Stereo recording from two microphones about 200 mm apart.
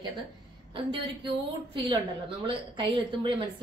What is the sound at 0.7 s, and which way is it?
Speech, 25° right (ahead or behind).